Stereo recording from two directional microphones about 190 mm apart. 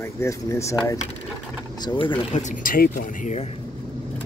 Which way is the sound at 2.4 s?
45° left (ahead or behind).